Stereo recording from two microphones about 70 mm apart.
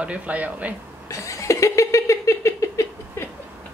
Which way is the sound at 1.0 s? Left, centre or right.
Left.